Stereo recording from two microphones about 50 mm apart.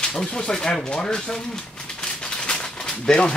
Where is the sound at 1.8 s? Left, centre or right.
Centre.